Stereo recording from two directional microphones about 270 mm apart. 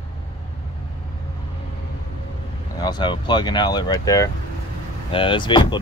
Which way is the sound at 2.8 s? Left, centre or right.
Centre.